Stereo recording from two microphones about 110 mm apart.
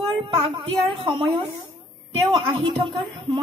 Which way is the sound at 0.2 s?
50° right (ahead or behind).